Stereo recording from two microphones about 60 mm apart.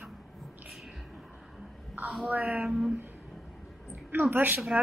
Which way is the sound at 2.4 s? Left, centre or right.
Centre.